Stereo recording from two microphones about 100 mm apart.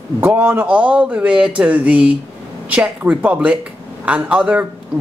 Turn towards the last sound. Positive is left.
turn(degrees=-15)  # may be behind; listen again after turning